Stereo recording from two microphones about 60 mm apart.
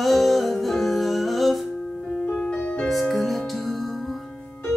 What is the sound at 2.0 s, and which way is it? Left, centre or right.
Music, centre.